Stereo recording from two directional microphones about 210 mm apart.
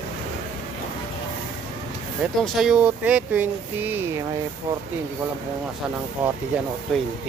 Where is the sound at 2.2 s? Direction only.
Centre (ahead or behind).